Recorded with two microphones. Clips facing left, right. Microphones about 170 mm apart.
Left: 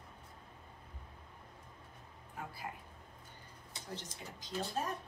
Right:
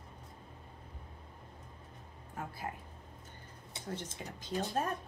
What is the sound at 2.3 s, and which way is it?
Speech, 50° right (ahead or behind).